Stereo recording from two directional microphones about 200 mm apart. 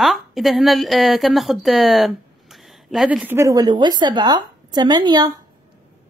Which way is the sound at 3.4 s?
15° right (ahead or behind).